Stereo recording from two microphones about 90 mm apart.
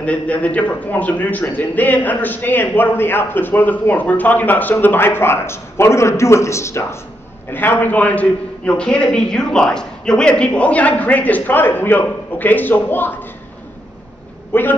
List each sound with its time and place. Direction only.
0.0 s a man's voice: 15° left (ahead or behind)
14.5 s a man's voice: 25° left (ahead or behind)